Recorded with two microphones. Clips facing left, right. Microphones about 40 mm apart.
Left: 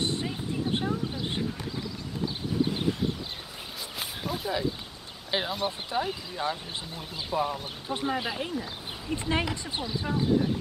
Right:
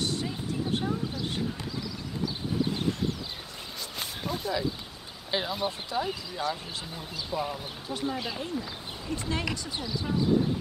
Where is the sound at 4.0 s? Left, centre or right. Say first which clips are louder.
Even; centre.